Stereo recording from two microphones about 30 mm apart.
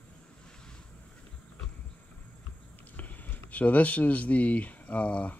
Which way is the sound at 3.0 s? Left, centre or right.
Left.